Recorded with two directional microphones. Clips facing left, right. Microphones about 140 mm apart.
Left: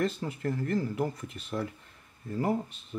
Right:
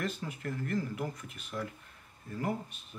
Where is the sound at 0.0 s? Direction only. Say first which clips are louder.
Left 6 dB; 30° left (ahead or behind).